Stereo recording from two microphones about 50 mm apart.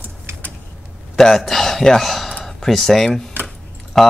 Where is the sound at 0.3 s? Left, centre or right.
Right.